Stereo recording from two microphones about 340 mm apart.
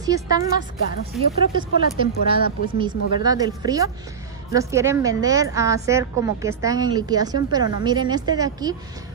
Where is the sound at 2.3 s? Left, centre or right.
Centre.